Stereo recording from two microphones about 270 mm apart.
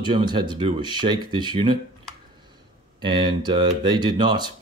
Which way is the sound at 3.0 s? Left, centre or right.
Centre.